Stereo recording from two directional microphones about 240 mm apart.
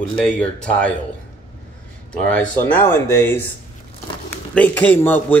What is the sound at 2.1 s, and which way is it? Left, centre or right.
Speech, centre.